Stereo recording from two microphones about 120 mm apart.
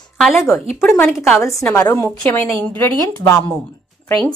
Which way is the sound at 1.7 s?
25° left (ahead or behind).